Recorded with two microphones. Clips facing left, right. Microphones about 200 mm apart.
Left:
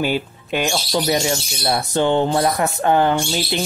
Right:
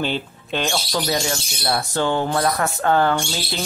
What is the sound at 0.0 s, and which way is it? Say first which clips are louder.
Speech: left 3 dB; 10° left (ahead or behind).